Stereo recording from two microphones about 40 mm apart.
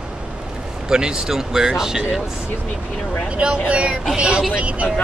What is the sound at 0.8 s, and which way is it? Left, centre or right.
Speech, centre.